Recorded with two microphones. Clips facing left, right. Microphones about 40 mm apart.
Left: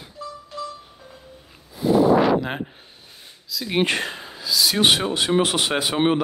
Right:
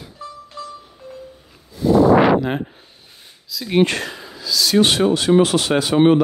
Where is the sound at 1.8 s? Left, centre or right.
Centre.